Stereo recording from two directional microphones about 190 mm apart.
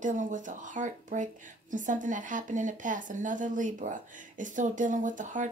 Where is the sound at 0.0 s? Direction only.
40° right (ahead or behind).